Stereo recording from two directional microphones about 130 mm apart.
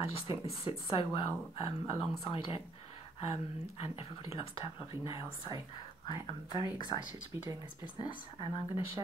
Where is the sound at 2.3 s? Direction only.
45° left (ahead or behind).